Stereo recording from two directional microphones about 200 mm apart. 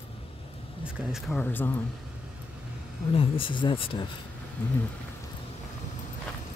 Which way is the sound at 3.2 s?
25° left (ahead or behind).